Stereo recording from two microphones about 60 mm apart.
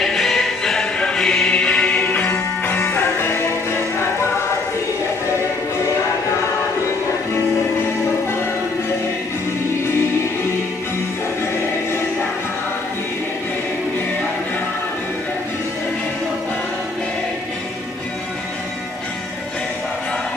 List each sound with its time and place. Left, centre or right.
0.0 s music: centre; by 4.3 s left